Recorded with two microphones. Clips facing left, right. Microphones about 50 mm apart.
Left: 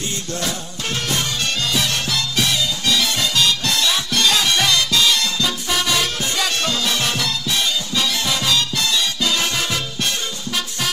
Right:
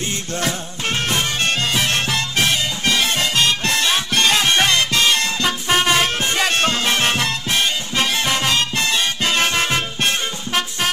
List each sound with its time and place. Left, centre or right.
0.3 s music: right